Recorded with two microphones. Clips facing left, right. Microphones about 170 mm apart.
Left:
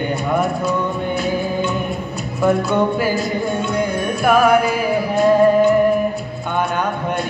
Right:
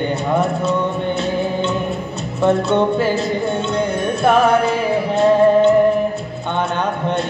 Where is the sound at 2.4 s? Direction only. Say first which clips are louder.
Right 1 dB; 25° right (ahead or behind).